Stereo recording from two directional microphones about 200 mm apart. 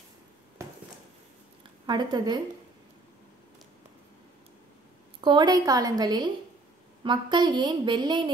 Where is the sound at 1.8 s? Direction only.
20° right (ahead or behind).